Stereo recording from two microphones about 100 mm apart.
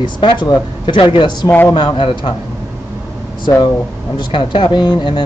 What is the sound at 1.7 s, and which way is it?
Speech, 60° left (ahead or behind).